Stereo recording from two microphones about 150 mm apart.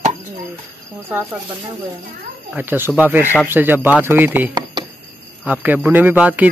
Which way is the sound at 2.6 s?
15° right (ahead or behind).